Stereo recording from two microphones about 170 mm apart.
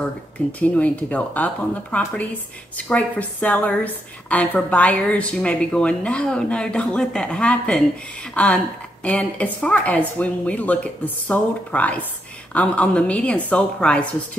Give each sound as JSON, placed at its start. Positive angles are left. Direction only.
{"t": 0.5, "sound": "a woman's voice", "side_deg": 10}